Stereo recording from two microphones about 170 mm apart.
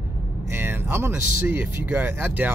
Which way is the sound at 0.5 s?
15° right (ahead or behind).